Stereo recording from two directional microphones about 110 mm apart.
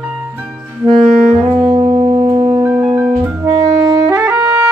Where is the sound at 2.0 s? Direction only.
50° right (ahead or behind).